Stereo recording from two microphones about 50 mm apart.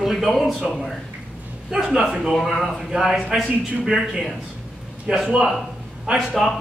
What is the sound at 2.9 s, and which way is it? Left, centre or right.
A man's voice, centre.